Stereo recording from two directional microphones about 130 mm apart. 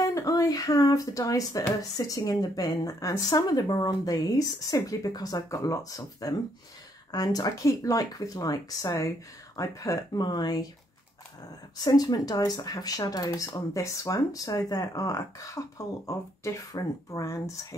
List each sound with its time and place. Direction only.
0.0 s speech: 25° left (ahead or behind)
11.8 s speech: 30° left (ahead or behind)